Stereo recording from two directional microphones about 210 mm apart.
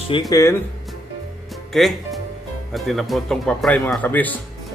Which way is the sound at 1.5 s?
Centre (ahead or behind).